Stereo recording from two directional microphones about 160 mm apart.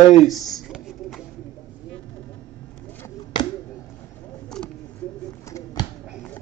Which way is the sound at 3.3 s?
25° left (ahead or behind).